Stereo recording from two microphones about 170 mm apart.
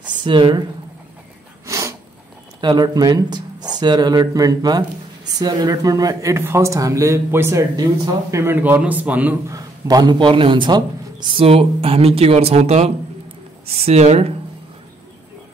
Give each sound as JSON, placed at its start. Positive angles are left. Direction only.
{"t": 0.2, "sound": "speech", "side_deg": -30}
{"t": 1.7, "sound": "sneeze", "side_deg": -20}
{"t": 2.6, "sound": "a man's voice", "side_deg": -25}
{"t": 9.6, "sound": "a man's voice", "side_deg": -20}